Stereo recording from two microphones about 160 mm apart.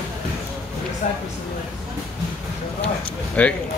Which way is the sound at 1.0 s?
50° left (ahead or behind).